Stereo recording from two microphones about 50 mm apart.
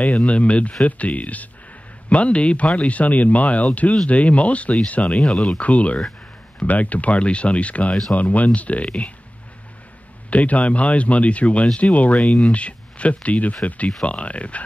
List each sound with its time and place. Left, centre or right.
0.0 s speech: left
5.2 s speech: centre
5.6 s speech: left
10.3 s speech: left
12.2 s speech: centre